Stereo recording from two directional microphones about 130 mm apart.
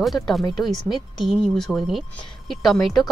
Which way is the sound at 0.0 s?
Centre (ahead or behind).